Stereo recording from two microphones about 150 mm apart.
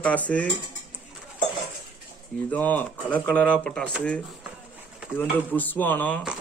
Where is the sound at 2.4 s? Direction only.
10° left (ahead or behind).